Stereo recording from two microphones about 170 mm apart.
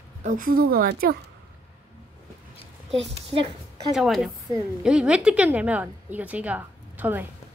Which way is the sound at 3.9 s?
Centre (ahead or behind).